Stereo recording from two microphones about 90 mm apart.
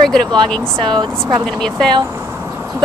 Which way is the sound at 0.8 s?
55° right (ahead or behind).